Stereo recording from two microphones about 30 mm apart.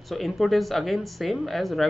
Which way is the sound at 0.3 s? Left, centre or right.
Centre.